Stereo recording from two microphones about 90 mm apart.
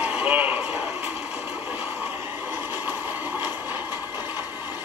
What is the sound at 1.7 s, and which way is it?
Train, 20° right (ahead or behind).